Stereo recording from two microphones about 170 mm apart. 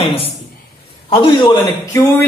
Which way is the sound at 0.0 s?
35° left (ahead or behind).